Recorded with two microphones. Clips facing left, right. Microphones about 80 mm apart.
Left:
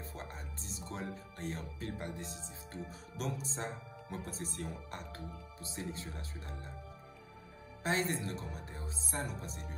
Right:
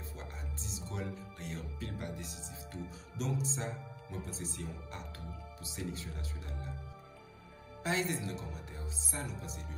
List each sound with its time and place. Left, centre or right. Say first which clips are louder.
0.1 s music: left 1 dB; left
1.9 s a woman's voice: left 3 dB; left
7.8 s a woman's voice: even; left